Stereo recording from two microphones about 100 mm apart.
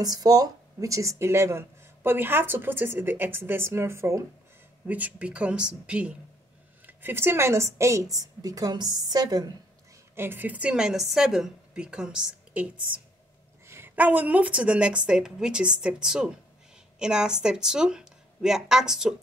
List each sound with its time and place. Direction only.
0.0 s speech: 40° right (ahead or behind)
4.8 s a woman's voice: 15° right (ahead or behind); by 9.5 s 40° right (ahead or behind)
10.1 s a woman's voice: 20° right (ahead or behind)
13.7 s a woman's voice: 25° right (ahead or behind); by 19.1 s 5° right (ahead or behind)